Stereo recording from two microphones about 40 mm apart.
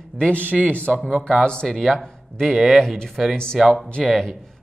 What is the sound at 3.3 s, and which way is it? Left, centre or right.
Speech, centre.